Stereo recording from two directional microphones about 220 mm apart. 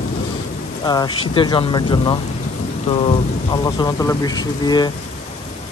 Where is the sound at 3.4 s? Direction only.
20° left (ahead or behind).